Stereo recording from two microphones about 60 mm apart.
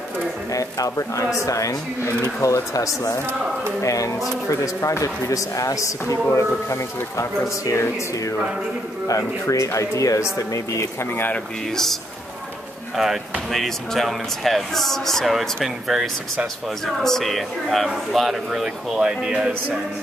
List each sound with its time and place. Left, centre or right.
0.5 s speech: left
9.0 s speech: left
11.7 s speech: centre
16.8 s speech: centre